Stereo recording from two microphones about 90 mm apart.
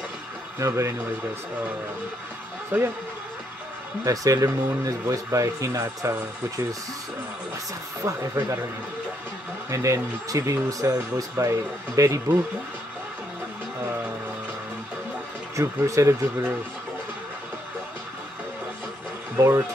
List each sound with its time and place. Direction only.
0.6 s speech: 35° right (ahead or behind)
2.7 s a man's voice: 20° right (ahead or behind)
4.0 s speech: 40° right (ahead or behind)
8.0 s speech: 35° right (ahead or behind)
9.7 s speech: 35° right (ahead or behind)
15.5 s speech: 35° right (ahead or behind)
19.3 s speech: 35° right (ahead or behind)